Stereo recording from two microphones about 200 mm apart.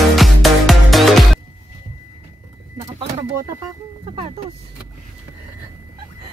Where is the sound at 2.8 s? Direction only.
30° right (ahead or behind).